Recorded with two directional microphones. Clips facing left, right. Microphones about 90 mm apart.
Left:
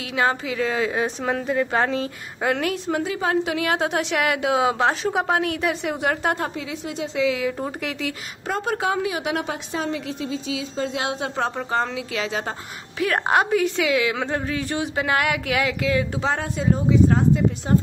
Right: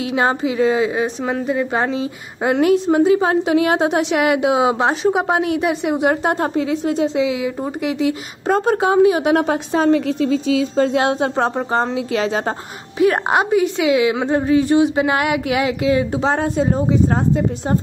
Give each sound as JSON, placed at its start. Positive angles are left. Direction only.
{"t": 0.1, "sound": "a woman's voice", "side_deg": -25}
{"t": 6.4, "sound": "a woman's voice", "side_deg": -40}
{"t": 7.2, "sound": "speech", "side_deg": -15}
{"t": 8.5, "sound": "a woman's voice", "side_deg": -35}
{"t": 13.0, "sound": "a woman's voice", "side_deg": -20}